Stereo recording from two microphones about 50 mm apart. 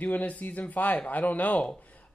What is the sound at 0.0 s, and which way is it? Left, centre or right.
A man's voice, left.